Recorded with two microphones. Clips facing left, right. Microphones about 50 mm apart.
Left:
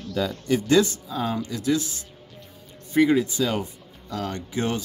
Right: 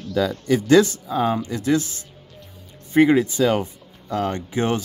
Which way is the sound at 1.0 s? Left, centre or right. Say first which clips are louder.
Right 6 dB; right.